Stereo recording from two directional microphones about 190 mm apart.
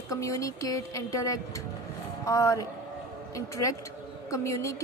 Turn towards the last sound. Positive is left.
turn(degrees=15)  # may be behind; listen again after turning